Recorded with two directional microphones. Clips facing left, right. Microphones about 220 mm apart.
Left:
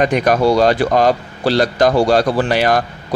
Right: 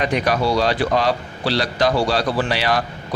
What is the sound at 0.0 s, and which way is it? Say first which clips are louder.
A man's voice: left 6 dB; 50° left (ahead or behind).